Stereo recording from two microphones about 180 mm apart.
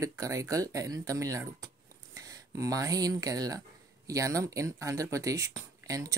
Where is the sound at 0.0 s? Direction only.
15° right (ahead or behind).